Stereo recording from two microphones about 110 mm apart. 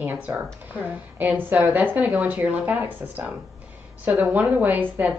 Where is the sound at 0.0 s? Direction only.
20° right (ahead or behind).